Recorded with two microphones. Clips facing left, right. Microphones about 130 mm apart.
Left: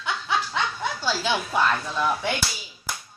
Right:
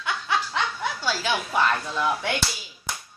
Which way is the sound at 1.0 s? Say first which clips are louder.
Left 1 dB; 20° left (ahead or behind).